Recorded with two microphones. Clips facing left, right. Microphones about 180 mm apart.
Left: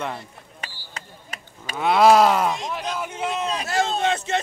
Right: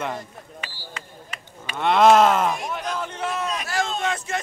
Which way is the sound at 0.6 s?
40° left (ahead or behind).